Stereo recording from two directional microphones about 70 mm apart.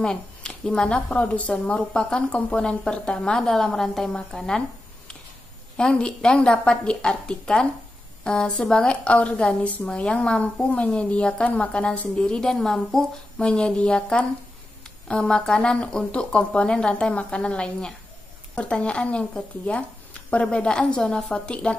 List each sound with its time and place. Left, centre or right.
0.0 s a woman's voice: centre